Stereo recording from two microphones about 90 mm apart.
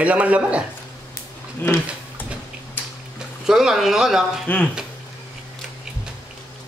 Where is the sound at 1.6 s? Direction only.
20° left (ahead or behind).